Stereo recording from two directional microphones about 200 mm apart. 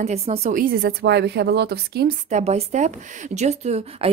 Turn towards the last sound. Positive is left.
turn(degrees=-35)  # may be behind; listen again after turning